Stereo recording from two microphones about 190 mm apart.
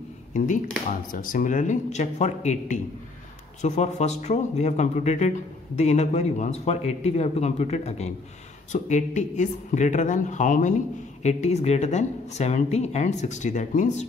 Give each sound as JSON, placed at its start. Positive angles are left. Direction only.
{"t": 1.1, "sound": "a woman's voice", "side_deg": 45}